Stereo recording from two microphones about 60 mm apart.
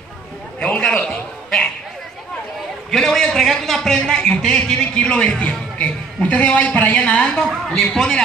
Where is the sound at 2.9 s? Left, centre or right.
Centre.